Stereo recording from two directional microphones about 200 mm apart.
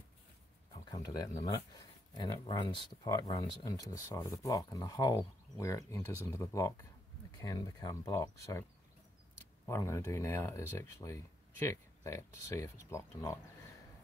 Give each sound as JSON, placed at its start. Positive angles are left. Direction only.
{"t": 0.8, "sound": "speech", "side_deg": 20}
{"t": 9.7, "sound": "speech", "side_deg": 15}